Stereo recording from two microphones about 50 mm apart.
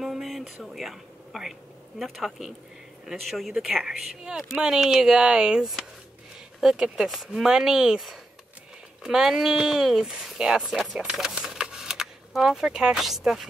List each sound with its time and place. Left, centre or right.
0.0 s a sound: centre
0.7 s speech: centre
3.8 s speech: centre
6.7 s speech: centre
9.0 s speech: centre